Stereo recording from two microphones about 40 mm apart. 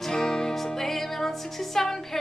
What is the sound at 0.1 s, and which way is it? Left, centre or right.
Music, centre.